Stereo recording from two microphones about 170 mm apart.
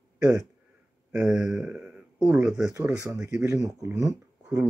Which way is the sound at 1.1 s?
5° right (ahead or behind).